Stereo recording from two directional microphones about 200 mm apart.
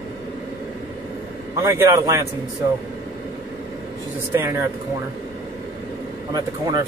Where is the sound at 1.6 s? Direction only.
10° right (ahead or behind).